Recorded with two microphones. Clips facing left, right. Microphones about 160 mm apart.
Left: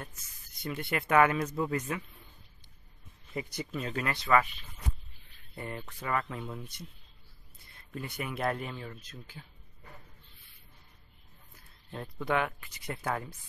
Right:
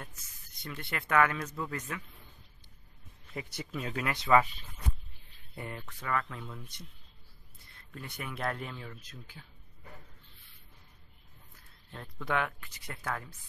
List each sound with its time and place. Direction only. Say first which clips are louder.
0.6 s speech: left 6 dB; 15° left (ahead or behind)
3.3 s speech: left 3 dB; 5° right (ahead or behind)
5.5 s speech: left 2 dB; centre (ahead or behind)
5.9 s speech: left 1 dB; 15° left (ahead or behind)
7.9 s speech: left 4 dB; 10° left (ahead or behind)
11.9 s speech: left 5 dB; 20° left (ahead or behind)
12.3 s speech: left 2 dB; 5° left (ahead or behind)